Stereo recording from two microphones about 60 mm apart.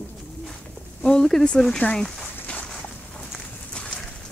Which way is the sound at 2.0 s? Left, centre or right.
Centre.